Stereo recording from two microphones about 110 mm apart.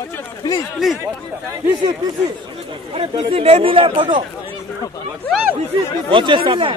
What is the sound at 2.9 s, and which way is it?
Speech, 60° right (ahead or behind).